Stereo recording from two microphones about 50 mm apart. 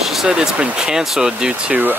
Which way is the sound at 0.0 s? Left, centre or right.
Centre.